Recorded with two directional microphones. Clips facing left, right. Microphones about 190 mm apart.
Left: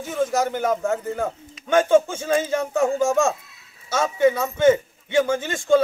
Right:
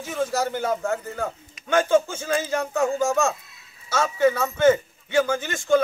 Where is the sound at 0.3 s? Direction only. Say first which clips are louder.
Left 3 dB; 20° left (ahead or behind).